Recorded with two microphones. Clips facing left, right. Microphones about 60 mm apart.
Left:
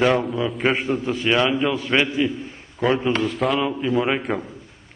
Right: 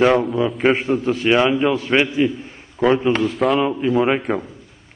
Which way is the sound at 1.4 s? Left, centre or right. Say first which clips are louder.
Right 4 dB; centre.